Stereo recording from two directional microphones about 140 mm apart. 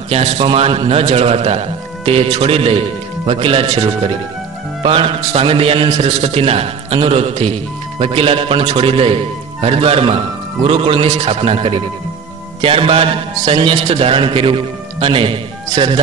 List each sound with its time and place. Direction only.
0.1 s a man's voice: 50° right (ahead or behind)